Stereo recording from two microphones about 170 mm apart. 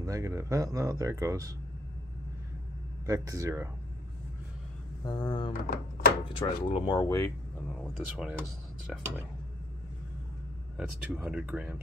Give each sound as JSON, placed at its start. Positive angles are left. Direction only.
{"t": 0.0, "sound": "speech", "side_deg": -20}
{"t": 3.1, "sound": "speech", "side_deg": -20}
{"t": 5.0, "sound": "speech", "side_deg": 25}
{"t": 5.7, "sound": "a sound", "side_deg": 60}
{"t": 6.4, "sound": "speech", "side_deg": 25}
{"t": 7.8, "sound": "speech", "side_deg": 0}
{"t": 10.8, "sound": "speech", "side_deg": -5}